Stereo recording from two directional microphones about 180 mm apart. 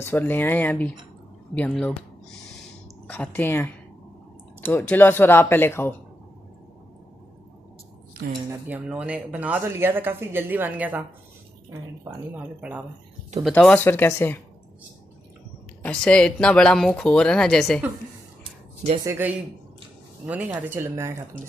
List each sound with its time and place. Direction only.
0.0 s speech: 10° left (ahead or behind)
3.1 s speech: 10° left (ahead or behind)
8.5 s speech: 10° right (ahead or behind)
12.1 s speech: 20° right (ahead or behind)
12.4 s speech: 10° right (ahead or behind)
13.4 s speech: 5° left (ahead or behind)
15.8 s speech: 5° left (ahead or behind)
19.0 s speech: 10° right (ahead or behind)